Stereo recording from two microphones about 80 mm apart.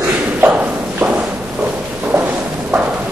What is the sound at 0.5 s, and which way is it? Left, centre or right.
Thump, centre.